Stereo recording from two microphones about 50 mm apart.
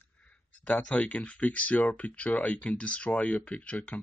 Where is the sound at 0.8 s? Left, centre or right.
Left.